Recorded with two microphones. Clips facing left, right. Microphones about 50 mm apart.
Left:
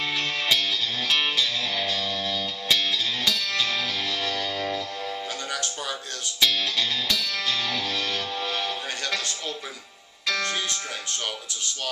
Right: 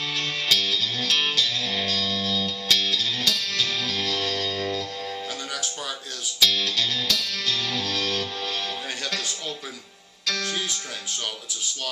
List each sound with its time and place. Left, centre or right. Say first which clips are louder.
0.0 s music: left 1 dB; centre
6.4 s music: right 1 dB; centre
10.2 s music: left 1 dB; centre